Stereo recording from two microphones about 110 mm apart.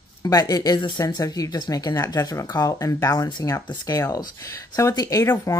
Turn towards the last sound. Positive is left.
turn(degrees=30)  # may be behind; listen again after turning